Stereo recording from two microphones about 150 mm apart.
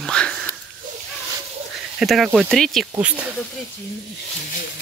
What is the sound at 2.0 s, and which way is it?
Speech, centre (ahead or behind).